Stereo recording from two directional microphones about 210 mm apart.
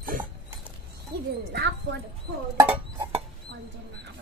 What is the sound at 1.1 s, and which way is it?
Speech, 45° right (ahead or behind).